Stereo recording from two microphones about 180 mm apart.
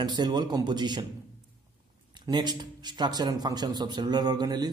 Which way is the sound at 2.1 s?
25° right (ahead or behind).